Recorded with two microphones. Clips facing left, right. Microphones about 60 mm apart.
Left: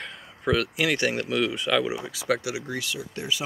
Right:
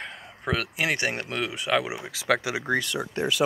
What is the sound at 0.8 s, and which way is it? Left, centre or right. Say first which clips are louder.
Speech: left 2 dB; right.